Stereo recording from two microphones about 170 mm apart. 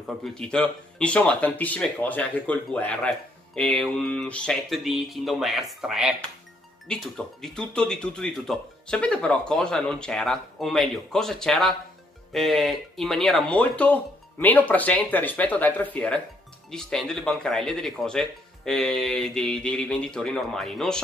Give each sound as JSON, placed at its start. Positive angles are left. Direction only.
{"t": 0.0, "sound": "speech", "side_deg": 0}